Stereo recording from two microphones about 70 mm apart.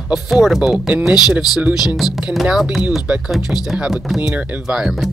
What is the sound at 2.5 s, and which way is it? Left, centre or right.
Speech, centre.